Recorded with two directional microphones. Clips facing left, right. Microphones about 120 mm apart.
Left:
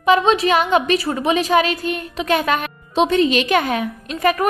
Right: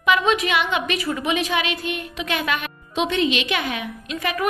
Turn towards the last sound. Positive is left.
turn(degrees=45)  # may be behind; listen again after turning